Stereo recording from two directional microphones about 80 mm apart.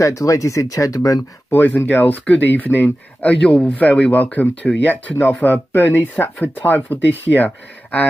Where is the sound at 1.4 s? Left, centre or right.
Left.